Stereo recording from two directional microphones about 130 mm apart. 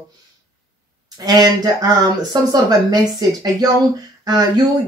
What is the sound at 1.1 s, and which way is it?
Speech, 30° right (ahead or behind).